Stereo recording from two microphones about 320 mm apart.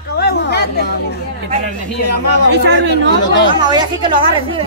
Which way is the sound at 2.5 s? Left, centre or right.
Right.